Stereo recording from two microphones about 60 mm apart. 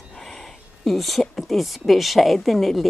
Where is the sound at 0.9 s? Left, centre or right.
Centre.